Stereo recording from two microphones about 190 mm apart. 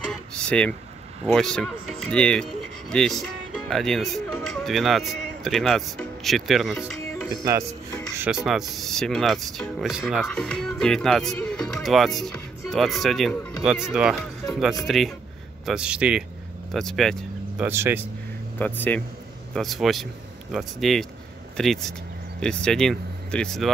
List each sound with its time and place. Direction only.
0.1 s a sound: 5° left (ahead or behind)
1.2 s speech: centre (ahead or behind)
7.2 s speech: 15° right (ahead or behind)
8.5 s speech: centre (ahead or behind)
17.6 s speech: 10° right (ahead or behind)
18.6 s speech: 10° left (ahead or behind)